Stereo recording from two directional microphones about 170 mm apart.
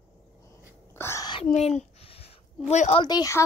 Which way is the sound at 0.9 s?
15° left (ahead or behind).